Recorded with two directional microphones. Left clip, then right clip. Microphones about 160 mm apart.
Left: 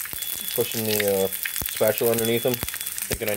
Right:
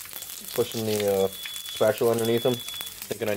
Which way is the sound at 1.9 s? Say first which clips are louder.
Even; 20° left (ahead or behind).